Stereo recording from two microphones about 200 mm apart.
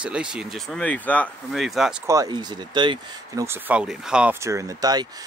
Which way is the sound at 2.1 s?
20° right (ahead or behind).